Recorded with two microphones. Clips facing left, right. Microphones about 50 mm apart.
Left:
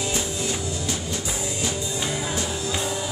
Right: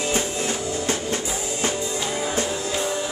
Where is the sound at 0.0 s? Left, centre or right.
Right.